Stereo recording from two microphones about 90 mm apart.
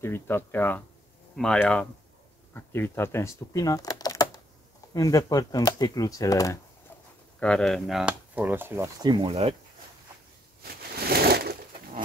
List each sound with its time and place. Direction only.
0.0 s speech: 25° left (ahead or behind)
1.3 s speech: 10° left (ahead or behind)
2.5 s speech: 25° left (ahead or behind)
7.3 s speech: 10° left (ahead or behind)
8.0 s speech: 15° right (ahead or behind)
9.0 s speech: 65° right (ahead or behind)